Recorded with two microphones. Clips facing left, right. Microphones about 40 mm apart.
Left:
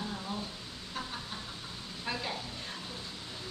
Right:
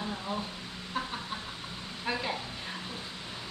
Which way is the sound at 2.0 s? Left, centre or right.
Centre.